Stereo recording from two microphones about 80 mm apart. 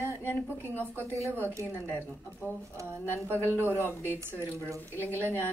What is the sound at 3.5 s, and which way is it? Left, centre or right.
Speech, left.